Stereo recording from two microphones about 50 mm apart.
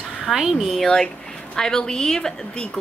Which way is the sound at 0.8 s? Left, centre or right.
Centre.